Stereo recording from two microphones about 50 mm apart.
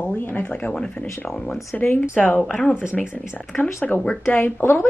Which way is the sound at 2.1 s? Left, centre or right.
Left.